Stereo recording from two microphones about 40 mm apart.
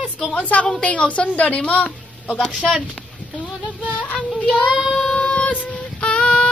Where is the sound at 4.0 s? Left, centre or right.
Left.